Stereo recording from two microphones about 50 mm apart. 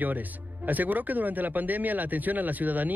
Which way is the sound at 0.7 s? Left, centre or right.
Right.